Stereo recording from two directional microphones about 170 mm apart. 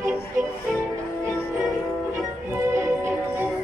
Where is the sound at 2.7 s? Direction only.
15° right (ahead or behind).